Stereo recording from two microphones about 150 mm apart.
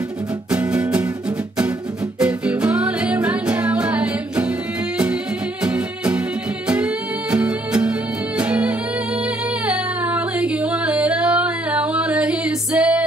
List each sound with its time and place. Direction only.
0.5 s music: 5° right (ahead or behind)
2.1 s music: 10° right (ahead or behind)
5.6 s music: 10° right (ahead or behind)